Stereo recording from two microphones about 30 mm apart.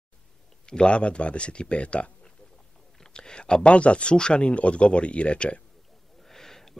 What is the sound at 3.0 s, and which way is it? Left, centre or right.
Speech, left.